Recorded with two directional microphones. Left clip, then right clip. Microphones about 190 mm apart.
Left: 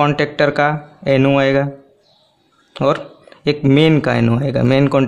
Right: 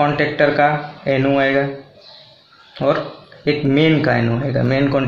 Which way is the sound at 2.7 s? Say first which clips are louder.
Left 1 dB; 55° left (ahead or behind).